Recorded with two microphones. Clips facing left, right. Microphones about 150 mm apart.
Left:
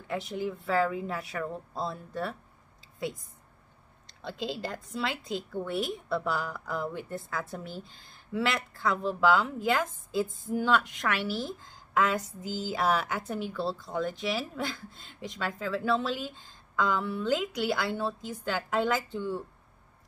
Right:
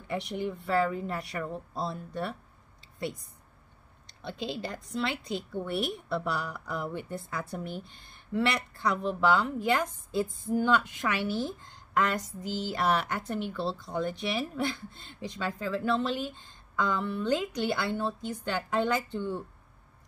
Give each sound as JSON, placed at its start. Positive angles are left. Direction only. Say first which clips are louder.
{"t": 0.1, "sound": "speech", "louder": "even", "side_deg": 0}
{"t": 4.1, "sound": "speech", "louder": "left 1 dB", "side_deg": 90}
{"t": 4.7, "sound": "speech", "louder": "right 1 dB", "side_deg": 5}
{"t": 7.9, "sound": "speech", "louder": "even", "side_deg": 90}
{"t": 8.3, "sound": "speech", "louder": "right 1 dB", "side_deg": 0}